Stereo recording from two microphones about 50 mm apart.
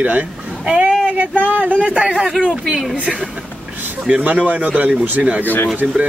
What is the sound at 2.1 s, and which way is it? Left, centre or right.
Speech, centre.